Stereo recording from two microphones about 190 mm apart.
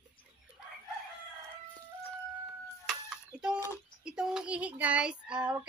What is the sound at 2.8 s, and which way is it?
A child's voice, 5° right (ahead or behind).